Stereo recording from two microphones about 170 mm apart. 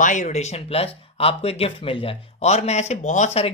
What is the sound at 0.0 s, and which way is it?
Speech, 45° left (ahead or behind).